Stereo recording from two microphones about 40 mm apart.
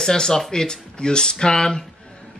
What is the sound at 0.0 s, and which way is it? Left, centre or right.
Speech, centre.